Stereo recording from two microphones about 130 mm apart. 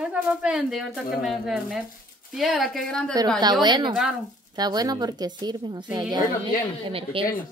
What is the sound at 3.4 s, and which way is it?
A woman's voice, 35° right (ahead or behind).